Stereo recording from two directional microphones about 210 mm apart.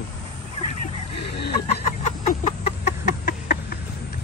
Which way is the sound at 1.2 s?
50° left (ahead or behind).